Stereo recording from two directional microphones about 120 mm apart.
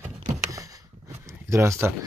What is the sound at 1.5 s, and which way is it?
Speech, 25° right (ahead or behind).